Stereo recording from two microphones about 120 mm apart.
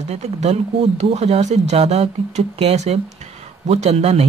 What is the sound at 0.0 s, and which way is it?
Speech, 65° right (ahead or behind).